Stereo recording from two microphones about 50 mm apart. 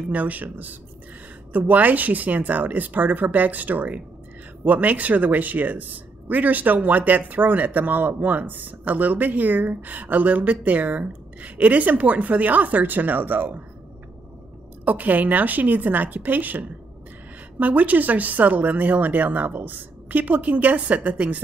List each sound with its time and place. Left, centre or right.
0.1 s speech: right
14.9 s speech: right